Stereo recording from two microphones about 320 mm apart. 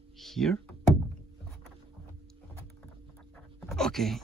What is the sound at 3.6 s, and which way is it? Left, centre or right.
Speech, centre.